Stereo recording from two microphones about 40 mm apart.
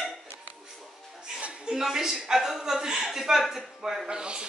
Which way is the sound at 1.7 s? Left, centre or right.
Centre.